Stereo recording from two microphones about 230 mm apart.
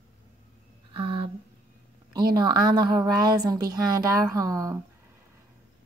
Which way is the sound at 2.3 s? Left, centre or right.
Centre.